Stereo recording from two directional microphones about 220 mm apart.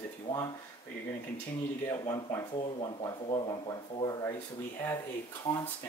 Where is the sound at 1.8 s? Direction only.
15° left (ahead or behind).